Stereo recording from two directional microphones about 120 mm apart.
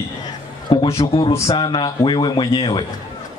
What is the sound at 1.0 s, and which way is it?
A man's voice, 50° left (ahead or behind).